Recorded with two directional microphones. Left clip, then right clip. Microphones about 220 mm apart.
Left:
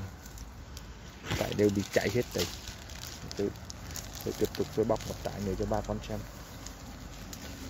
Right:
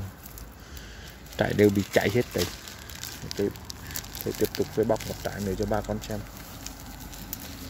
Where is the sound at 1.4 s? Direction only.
25° right (ahead or behind).